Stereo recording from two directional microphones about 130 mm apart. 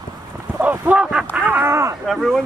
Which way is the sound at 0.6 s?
10° right (ahead or behind).